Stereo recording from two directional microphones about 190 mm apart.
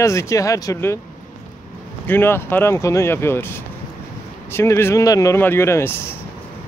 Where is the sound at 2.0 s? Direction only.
10° left (ahead or behind).